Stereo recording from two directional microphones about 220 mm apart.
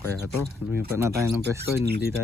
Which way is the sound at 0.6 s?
10° right (ahead or behind).